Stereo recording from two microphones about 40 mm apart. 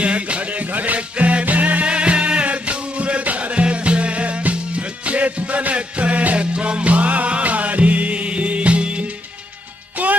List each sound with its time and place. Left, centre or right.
0.0 s music: right
0.9 s music: right